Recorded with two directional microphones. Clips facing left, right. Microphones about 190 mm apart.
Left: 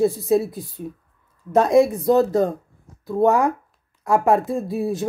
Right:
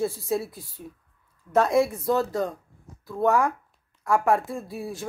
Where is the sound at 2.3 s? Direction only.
50° left (ahead or behind).